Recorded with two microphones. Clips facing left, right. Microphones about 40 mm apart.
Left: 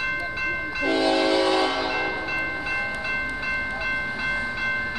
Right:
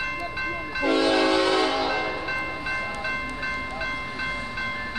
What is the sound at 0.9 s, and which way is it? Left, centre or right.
Train, right.